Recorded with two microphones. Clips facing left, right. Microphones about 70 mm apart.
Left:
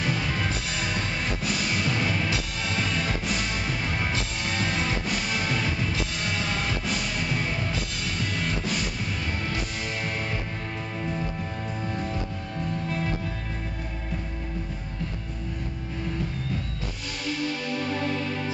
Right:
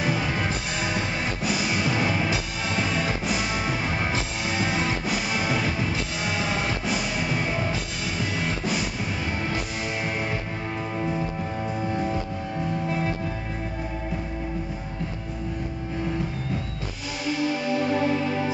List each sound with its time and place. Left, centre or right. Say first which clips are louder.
0.0 s music: right 2 dB; centre
11.0 s music: right 3 dB; centre
17.3 s music: right 5 dB; centre